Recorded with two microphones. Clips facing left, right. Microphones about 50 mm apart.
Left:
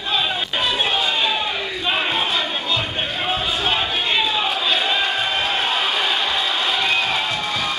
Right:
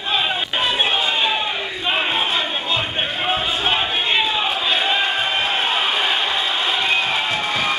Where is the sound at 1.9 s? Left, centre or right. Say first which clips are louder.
Right 1 dB; centre.